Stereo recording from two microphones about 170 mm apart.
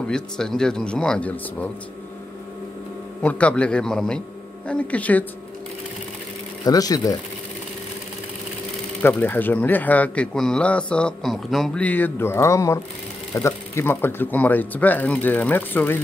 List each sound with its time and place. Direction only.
0.0 s speech: 5° left (ahead or behind)
3.2 s speech: 10° left (ahead or behind)
6.6 s speech: 20° left (ahead or behind)
9.0 s speech: 10° left (ahead or behind)